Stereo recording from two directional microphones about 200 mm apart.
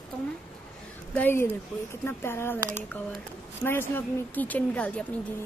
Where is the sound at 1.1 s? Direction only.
10° left (ahead or behind).